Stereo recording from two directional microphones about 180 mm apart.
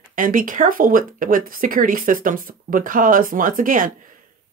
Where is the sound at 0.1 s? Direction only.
50° right (ahead or behind).